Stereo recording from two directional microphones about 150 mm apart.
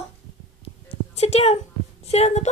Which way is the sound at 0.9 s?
45° left (ahead or behind).